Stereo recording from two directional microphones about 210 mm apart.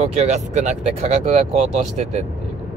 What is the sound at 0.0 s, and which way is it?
Speech, 30° right (ahead or behind).